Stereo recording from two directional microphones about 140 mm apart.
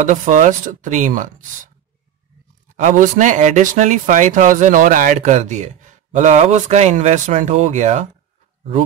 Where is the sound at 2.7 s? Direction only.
70° right (ahead or behind).